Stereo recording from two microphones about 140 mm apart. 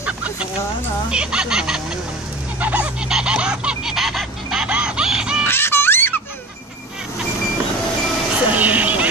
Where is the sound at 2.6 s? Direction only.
10° right (ahead or behind).